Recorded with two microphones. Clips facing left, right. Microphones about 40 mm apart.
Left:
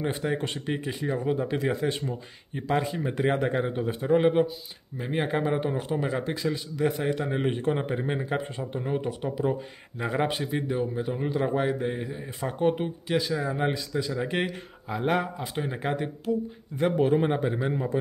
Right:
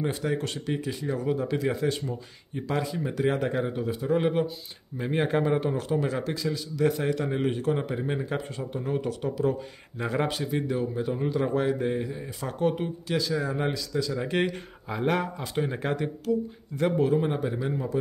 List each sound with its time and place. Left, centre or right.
0.0 s speech: centre
4.2 s speech: centre
6.3 s speech: left
6.8 s speech: centre
7.4 s speech: left
14.1 s speech: centre
16.3 s speech: left
16.9 s a man's voice: left